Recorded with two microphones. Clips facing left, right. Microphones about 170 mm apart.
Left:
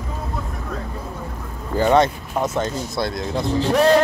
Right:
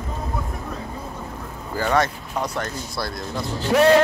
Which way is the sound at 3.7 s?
Centre (ahead or behind).